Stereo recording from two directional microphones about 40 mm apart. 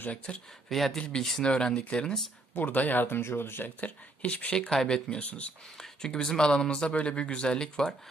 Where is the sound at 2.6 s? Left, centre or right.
Left.